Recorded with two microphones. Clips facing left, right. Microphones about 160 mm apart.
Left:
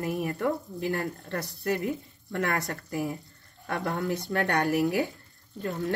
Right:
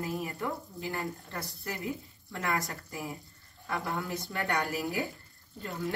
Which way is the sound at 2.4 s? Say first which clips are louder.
Left 3 dB; 65° left (ahead or behind).